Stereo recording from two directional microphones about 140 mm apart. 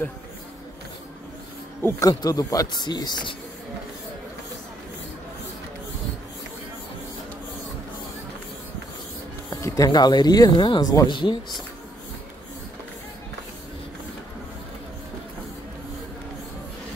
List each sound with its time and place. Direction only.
1.8 s speech: 20° left (ahead or behind)
9.6 s speech: 25° left (ahead or behind)